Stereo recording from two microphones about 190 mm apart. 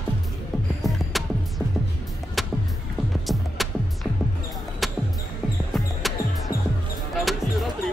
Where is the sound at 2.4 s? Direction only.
Centre (ahead or behind).